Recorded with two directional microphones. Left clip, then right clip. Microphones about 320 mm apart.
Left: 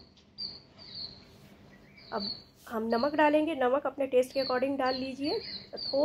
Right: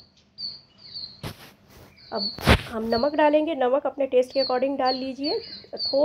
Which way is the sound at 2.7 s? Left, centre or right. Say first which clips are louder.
Right 6 dB; centre.